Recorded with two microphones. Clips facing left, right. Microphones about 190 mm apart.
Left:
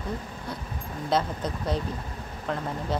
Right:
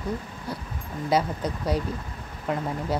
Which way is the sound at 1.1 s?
10° right (ahead or behind).